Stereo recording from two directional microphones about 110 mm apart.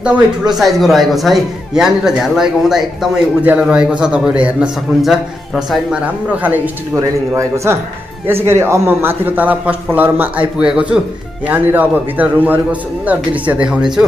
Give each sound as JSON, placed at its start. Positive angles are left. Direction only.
{"t": 0.6, "sound": "a man's voice", "side_deg": 0}
{"t": 5.9, "sound": "a man's voice", "side_deg": -15}
{"t": 7.0, "sound": "a man's voice", "side_deg": -25}